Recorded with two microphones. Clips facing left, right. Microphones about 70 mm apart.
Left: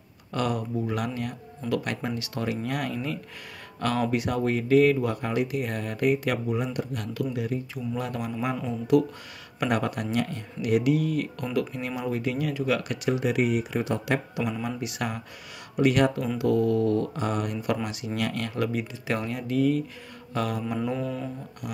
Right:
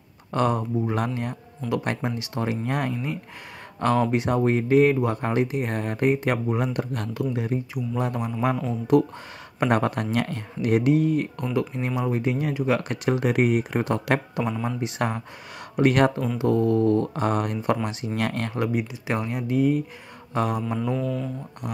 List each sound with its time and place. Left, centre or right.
0.3 s speech: right
6.5 s speech: right
7.2 s speech: right
7.7 s speech: centre; by 14.4 s right
14.6 s speech: right
18.6 s speech: right
20.8 s mantra: centre